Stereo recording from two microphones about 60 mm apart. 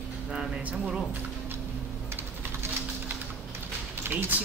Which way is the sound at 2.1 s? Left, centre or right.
Right.